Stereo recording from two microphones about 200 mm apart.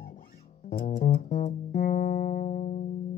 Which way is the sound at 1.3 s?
50° left (ahead or behind).